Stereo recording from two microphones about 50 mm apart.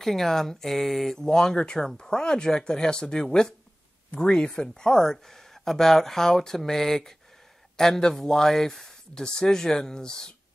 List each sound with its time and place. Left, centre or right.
0.0 s speech: centre